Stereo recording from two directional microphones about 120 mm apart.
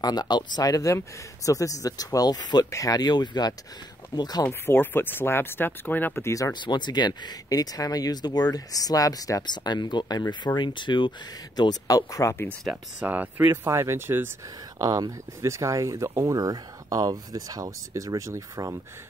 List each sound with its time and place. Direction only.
0.0 s speech: 35° left (ahead or behind)
4.5 s speech: 15° left (ahead or behind)
6.6 s speech: 40° left (ahead or behind)
13.0 s speech: 15° right (ahead or behind)
14.8 s speech: 30° right (ahead or behind)